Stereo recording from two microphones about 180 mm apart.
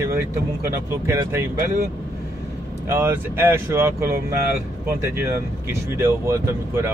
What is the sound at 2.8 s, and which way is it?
Speech, 15° right (ahead or behind).